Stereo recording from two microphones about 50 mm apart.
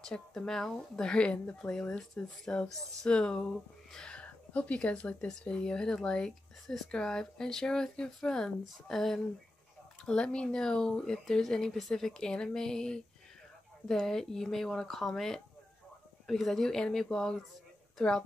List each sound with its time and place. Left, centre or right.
0.0 s speech: centre
10.0 s speech: centre